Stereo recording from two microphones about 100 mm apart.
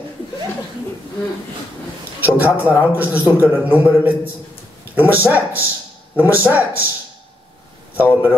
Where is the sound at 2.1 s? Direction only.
20° right (ahead or behind).